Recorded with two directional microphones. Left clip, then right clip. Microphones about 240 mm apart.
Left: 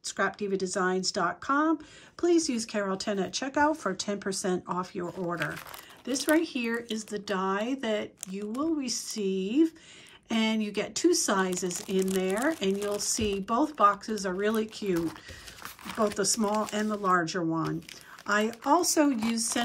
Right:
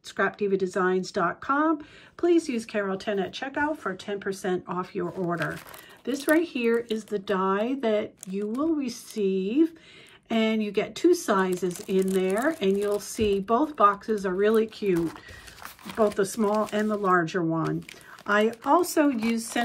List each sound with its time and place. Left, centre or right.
0.0 s speech: centre